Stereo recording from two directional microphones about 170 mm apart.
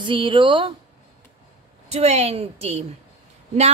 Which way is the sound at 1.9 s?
40° right (ahead or behind).